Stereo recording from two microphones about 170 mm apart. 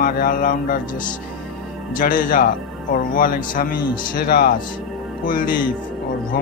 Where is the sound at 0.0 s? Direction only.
55° left (ahead or behind).